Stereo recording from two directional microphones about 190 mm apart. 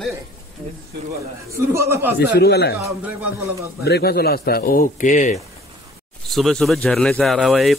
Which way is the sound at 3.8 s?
55° left (ahead or behind).